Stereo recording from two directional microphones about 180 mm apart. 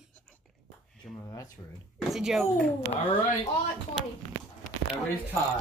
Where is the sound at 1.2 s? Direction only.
20° left (ahead or behind).